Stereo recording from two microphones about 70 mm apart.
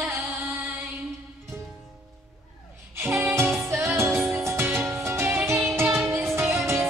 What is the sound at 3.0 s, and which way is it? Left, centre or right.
Music, right.